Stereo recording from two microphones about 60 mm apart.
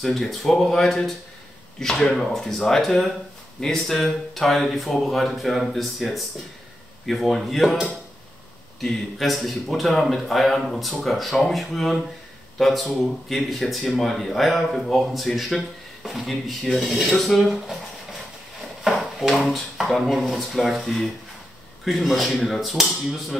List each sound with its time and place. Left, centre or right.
0.0 s a man's voice: centre
18.9 s a man's voice: centre